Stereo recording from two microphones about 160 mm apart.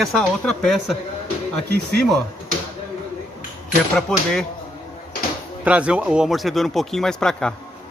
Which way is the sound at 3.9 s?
5° left (ahead or behind).